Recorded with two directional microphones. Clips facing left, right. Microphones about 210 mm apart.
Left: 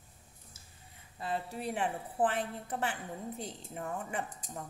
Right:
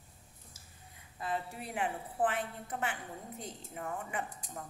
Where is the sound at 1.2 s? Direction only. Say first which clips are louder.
Left 2 dB; 35° left (ahead or behind).